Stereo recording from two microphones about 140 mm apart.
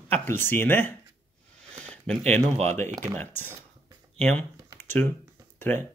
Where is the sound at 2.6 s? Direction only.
55° right (ahead or behind).